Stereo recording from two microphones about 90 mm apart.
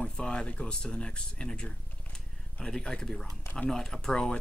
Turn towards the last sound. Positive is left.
turn(degrees=10)  # may be behind; listen again after turning